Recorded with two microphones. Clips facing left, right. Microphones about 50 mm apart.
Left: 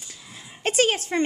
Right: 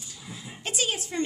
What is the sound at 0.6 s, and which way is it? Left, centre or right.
Speech, left.